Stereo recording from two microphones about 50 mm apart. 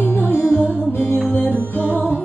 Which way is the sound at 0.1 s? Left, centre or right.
Left.